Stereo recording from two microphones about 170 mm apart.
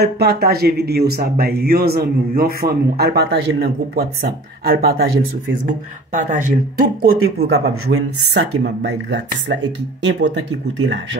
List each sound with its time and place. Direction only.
0.0 s speech: 70° right (ahead or behind)
6.1 s speech: 50° right (ahead or behind); by 7.7 s 65° right (ahead or behind)
8.3 s speech: 90° right